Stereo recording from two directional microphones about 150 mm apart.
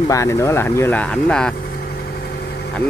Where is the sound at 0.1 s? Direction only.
20° left (ahead or behind).